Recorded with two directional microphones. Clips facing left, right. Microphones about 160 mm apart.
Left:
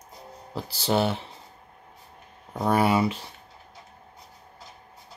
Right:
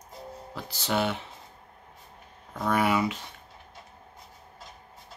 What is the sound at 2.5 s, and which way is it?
Speech, 30° left (ahead or behind).